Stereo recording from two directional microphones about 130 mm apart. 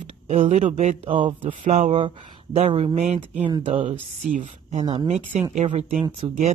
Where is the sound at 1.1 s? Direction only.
40° right (ahead or behind); by 3.5 s 60° right (ahead or behind).